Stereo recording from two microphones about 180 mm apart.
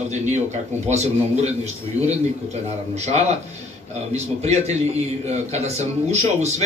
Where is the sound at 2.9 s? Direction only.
35° right (ahead or behind).